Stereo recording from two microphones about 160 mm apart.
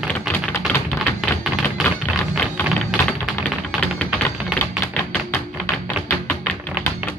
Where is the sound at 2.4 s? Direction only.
5° left (ahead or behind).